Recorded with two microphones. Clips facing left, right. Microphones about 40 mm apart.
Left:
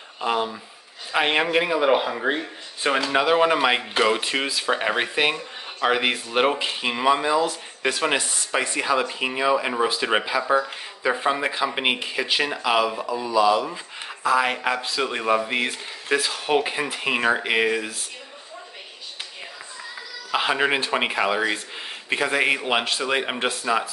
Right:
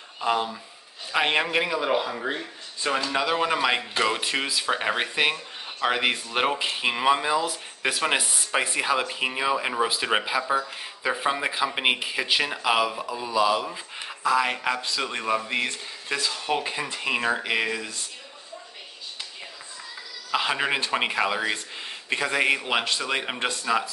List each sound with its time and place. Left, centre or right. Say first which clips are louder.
0.2 s speech: left 1 dB; centre
1.8 s speech: left 5 dB; left; by 13.7 s centre
13.7 s speech: left 2 dB; centre
20.2 s speech: left 3 dB; centre